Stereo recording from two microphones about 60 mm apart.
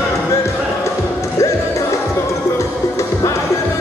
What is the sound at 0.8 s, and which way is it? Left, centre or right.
Music, left.